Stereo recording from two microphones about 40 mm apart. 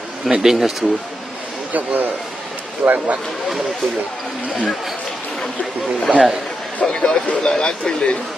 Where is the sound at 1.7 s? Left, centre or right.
Right.